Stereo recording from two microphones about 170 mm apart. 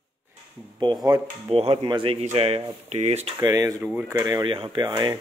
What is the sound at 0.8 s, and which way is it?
Speech, 25° right (ahead or behind).